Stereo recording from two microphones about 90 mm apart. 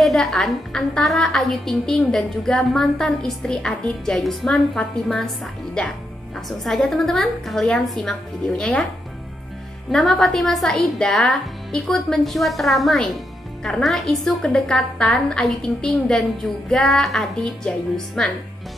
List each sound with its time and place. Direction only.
0.0 s a woman's voice: 5° left (ahead or behind)
9.8 s a woman's voice: centre (ahead or behind)